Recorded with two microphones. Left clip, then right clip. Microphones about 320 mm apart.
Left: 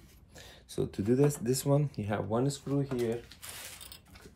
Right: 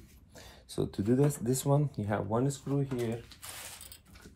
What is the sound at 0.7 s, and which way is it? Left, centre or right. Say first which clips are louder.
Speech: left 1 dB; centre.